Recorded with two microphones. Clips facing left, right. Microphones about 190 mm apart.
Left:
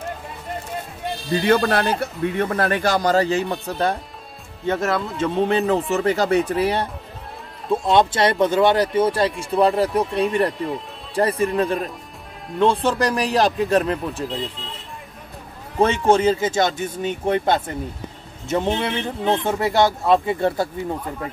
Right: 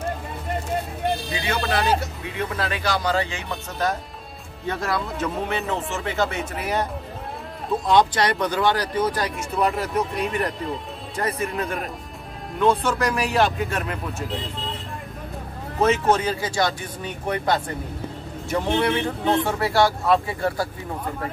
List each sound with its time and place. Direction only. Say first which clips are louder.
1.4 s speech: left 8 dB; 50° left (ahead or behind); by 5.3 s 25° left (ahead or behind)
5.4 s speech: left 7 dB; 35° left (ahead or behind)
15.8 s speech: left 3 dB; 30° left (ahead or behind)